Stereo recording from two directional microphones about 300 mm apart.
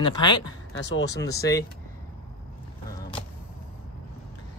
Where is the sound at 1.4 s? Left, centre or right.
Centre.